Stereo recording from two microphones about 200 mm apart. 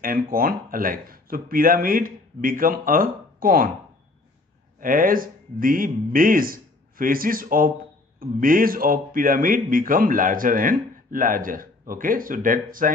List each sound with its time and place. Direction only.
0.0 s a man's voice: 45° right (ahead or behind)
4.7 s a man's voice: 45° right (ahead or behind)